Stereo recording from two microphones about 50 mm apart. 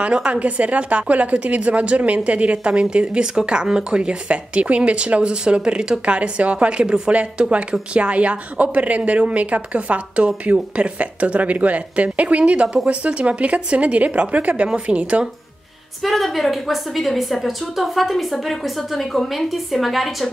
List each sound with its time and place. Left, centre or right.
0.0 s a woman's voice: right
16.0 s a woman's voice: centre